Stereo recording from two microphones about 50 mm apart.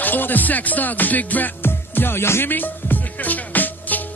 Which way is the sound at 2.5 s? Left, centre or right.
Left.